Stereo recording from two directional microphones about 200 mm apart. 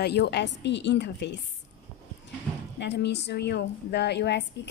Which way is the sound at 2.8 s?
60° left (ahead or behind).